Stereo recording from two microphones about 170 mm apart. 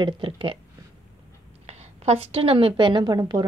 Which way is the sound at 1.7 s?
40° right (ahead or behind).